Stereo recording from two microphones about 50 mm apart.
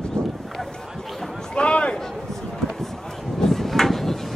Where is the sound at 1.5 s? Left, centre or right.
Left.